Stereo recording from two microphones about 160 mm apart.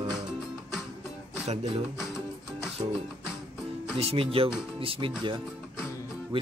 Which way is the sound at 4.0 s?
40° right (ahead or behind).